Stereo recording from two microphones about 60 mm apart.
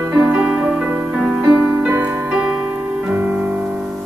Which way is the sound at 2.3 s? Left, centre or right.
Centre.